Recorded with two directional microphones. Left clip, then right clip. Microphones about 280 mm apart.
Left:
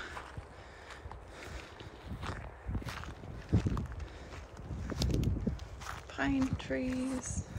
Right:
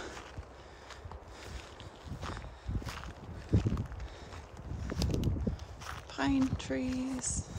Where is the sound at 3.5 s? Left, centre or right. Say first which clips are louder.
Right 1 dB; centre.